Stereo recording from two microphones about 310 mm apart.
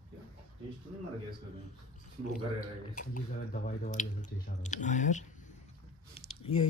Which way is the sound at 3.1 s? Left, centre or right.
Left.